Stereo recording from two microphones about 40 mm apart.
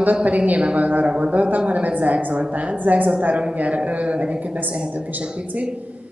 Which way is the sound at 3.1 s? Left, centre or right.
Right.